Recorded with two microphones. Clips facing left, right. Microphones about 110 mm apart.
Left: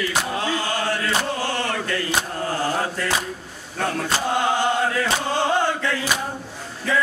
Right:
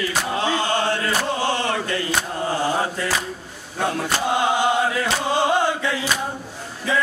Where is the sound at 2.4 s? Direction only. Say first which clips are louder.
Right 3 dB; 15° right (ahead or behind).